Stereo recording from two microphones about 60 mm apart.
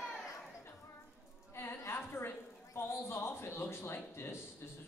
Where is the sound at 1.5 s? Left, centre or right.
Left.